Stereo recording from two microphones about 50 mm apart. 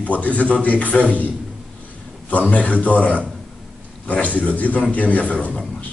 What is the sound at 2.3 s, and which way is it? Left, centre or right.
Speech, left.